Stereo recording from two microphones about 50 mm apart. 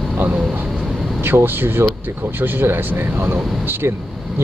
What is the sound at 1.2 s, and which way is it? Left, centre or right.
Speech, right.